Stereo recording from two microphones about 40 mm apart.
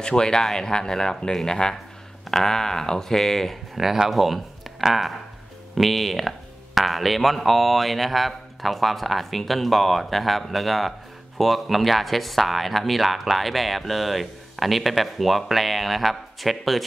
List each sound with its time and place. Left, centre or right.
0.0 s speech: centre
3.7 s speech: centre